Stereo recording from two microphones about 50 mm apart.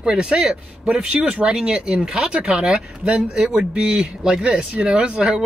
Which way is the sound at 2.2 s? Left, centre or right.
Right.